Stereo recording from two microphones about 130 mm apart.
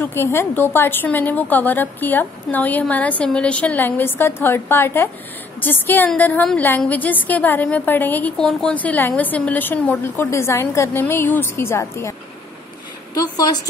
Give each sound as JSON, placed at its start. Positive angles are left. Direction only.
{"t": 0.0, "sound": "a woman's voice", "side_deg": 20}
{"t": 8.4, "sound": "a woman's voice", "side_deg": 5}
{"t": 13.1, "sound": "a sound", "side_deg": 30}